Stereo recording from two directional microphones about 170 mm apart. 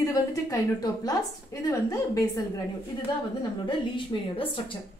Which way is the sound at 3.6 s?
30° left (ahead or behind).